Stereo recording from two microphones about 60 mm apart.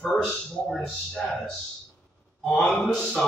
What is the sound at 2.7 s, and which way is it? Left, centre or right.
Speech, centre.